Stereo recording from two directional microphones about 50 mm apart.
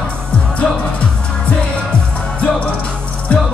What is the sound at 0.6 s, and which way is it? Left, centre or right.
Music, left.